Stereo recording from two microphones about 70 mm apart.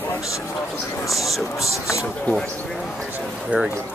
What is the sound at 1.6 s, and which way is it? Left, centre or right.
Speech, left.